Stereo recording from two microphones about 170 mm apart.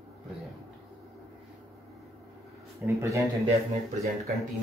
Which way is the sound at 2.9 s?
15° right (ahead or behind).